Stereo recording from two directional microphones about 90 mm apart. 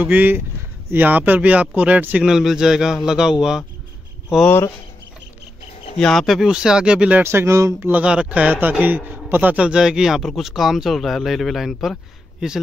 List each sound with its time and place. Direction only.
0.0 s a man's voice: 20° right (ahead or behind)
2.2 s a man's voice: 5° right (ahead or behind)
5.9 s a man's voice: 5° left (ahead or behind); by 7.2 s 15° right (ahead or behind)
7.2 s speech: 30° right (ahead or behind)
7.9 s a man's voice: 10° right (ahead or behind)